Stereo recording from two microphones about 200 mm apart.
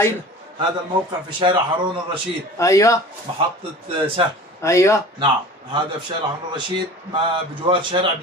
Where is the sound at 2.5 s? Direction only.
15° left (ahead or behind).